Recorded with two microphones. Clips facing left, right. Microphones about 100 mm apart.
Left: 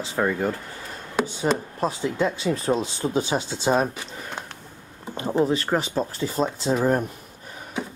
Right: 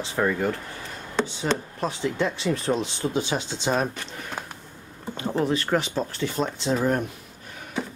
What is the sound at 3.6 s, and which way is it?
Speech, 5° left (ahead or behind).